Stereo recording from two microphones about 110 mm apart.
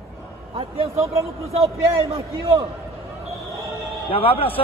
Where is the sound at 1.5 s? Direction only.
65° right (ahead or behind).